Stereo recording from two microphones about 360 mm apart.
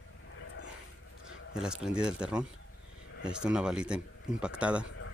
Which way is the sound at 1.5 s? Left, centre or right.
Centre.